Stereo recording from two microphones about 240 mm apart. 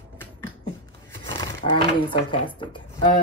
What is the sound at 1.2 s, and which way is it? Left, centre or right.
Speech, centre.